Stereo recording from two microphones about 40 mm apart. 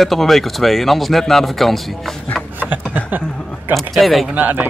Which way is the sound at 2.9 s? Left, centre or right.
Right.